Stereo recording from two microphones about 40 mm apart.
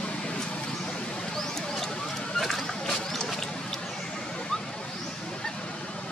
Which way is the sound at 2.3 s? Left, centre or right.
Centre.